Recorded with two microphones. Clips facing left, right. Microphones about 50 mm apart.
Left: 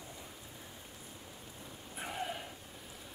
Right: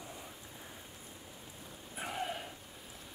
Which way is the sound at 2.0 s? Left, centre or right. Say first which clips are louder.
Right 1 dB; centre.